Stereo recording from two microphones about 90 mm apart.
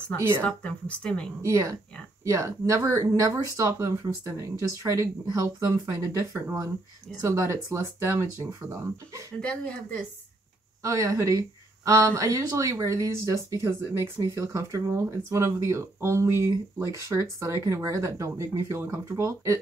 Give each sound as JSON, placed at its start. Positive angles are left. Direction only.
{"t": 0.4, "sound": "a woman's voice", "side_deg": 15}
{"t": 1.4, "sound": "speech", "side_deg": -35}
{"t": 9.4, "sound": "a woman's voice", "side_deg": 10}
{"t": 10.8, "sound": "speech", "side_deg": -35}